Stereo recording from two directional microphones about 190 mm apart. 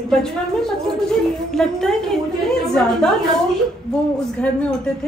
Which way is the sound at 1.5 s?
Centre (ahead or behind).